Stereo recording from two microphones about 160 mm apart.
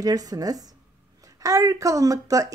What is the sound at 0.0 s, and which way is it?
Speech, 25° right (ahead or behind).